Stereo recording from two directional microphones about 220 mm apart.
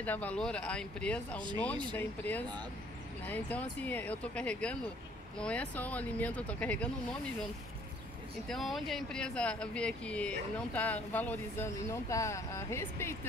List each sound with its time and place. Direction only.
0.0 s speech: 5° left (ahead or behind)
8.5 s speech: centre (ahead or behind)